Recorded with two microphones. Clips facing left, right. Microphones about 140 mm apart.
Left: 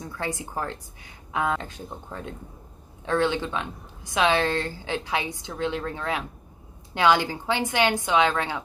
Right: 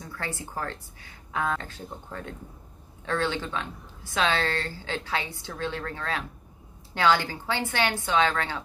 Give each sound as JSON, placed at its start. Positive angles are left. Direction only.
{"t": 0.2, "sound": "a woman's voice", "side_deg": 15}